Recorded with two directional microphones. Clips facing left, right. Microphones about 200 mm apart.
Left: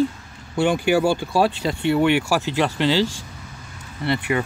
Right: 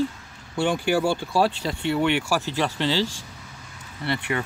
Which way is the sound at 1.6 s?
60° left (ahead or behind).